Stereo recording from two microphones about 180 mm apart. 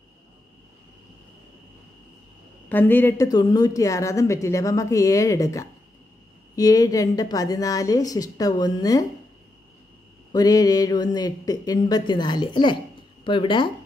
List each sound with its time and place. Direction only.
2.7 s a woman's voice: 10° left (ahead or behind)
10.3 s a woman's voice: 20° left (ahead or behind)